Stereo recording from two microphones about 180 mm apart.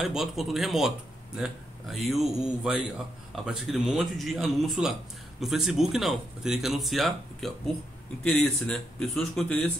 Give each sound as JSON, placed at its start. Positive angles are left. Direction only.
{"t": 0.0, "sound": "speech", "side_deg": 0}